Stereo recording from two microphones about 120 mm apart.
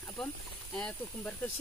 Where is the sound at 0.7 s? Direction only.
10° left (ahead or behind).